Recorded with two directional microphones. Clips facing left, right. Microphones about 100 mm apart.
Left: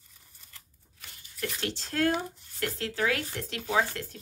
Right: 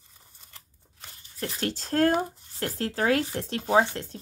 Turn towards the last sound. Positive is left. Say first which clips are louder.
# right 5 dB
turn(degrees=-30)  # may be behind; listen again after turning